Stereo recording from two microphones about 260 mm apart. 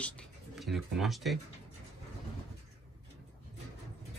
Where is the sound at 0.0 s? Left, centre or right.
Centre.